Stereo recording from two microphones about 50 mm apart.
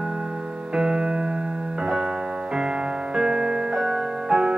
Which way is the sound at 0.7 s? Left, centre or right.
Centre.